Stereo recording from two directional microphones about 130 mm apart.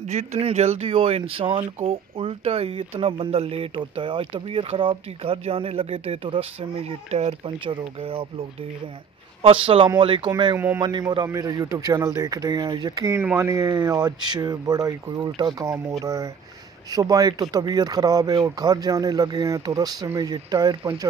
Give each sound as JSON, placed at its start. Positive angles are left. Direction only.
{"t": 0.0, "sound": "speech", "side_deg": -65}
{"t": 7.5, "sound": "speech", "side_deg": -40}
{"t": 13.1, "sound": "speech", "side_deg": -15}